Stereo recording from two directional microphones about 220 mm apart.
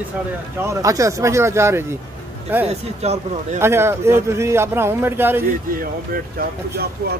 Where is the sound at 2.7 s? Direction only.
30° right (ahead or behind).